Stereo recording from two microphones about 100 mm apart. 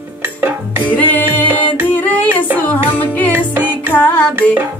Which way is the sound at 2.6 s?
15° left (ahead or behind).